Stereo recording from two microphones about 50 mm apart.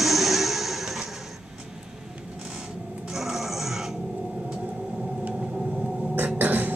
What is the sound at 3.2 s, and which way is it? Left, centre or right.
Music, centre.